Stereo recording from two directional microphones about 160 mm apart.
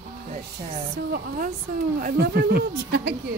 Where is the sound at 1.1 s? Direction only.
70° right (ahead or behind).